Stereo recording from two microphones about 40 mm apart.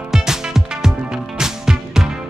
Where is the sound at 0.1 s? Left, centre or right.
Centre.